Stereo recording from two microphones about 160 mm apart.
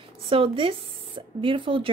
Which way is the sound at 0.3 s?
35° right (ahead or behind).